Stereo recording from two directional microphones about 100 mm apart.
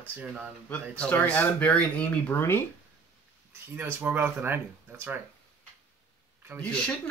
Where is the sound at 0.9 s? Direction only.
15° left (ahead or behind).